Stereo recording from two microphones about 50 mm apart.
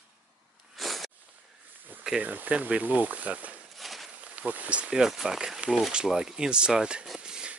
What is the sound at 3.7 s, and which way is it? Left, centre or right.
Walk, centre.